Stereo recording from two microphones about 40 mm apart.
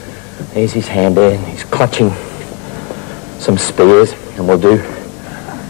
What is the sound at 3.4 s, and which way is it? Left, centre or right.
Speech, centre.